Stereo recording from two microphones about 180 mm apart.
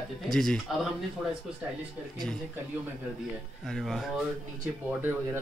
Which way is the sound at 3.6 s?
Centre (ahead or behind).